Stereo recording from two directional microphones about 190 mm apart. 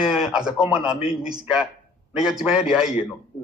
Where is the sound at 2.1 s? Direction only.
5° right (ahead or behind).